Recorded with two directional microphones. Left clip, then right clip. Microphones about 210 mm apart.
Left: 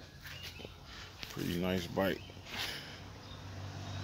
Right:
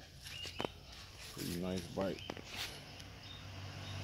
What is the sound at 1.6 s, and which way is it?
Speech, 30° left (ahead or behind).